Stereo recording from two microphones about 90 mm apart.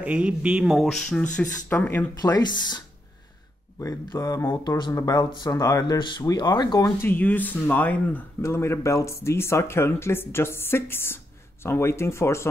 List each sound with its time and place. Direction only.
0.0 s speech: 10° right (ahead or behind); by 2.0 s 20° left (ahead or behind)
2.2 s speech: 50° left (ahead or behind)
3.8 s speech: 40° left (ahead or behind)
4.6 s speech: 60° left (ahead or behind)
4.9 s speech: 45° left (ahead or behind)
5.9 s speech: 60° left (ahead or behind)
7.0 s speech: 20° left (ahead or behind)
8.4 s speech: 30° left (ahead or behind)